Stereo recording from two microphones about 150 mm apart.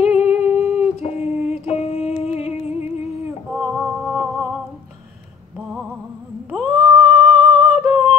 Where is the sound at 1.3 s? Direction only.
10° right (ahead or behind).